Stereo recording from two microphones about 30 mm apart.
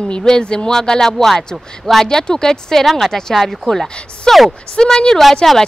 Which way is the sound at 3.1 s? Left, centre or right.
Centre.